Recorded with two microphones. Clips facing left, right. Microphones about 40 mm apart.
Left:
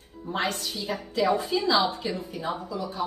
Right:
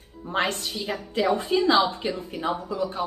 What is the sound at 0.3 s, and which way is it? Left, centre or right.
A woman's voice, right.